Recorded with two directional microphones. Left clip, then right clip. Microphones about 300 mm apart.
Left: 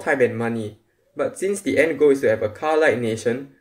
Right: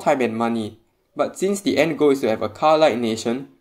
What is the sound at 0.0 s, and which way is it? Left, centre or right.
Speech, right.